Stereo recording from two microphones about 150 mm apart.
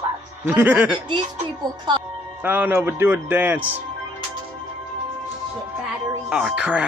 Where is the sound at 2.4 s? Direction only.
10° right (ahead or behind).